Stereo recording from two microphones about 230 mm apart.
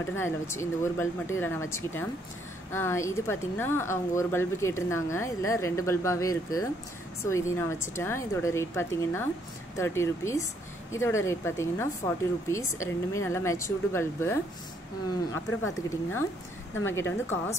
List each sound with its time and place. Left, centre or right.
0.0 s a woman's voice: centre